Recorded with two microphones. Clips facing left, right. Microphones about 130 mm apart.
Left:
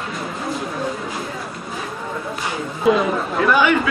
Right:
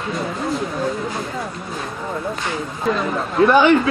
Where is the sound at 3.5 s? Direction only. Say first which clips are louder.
Right 3 dB; 30° right (ahead or behind).